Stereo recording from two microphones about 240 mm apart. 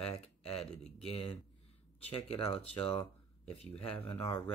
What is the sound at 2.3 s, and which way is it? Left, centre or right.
Speech, left.